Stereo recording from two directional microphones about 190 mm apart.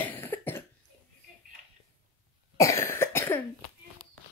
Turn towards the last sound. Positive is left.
turn(degrees=10)  # may be behind; listen again after turning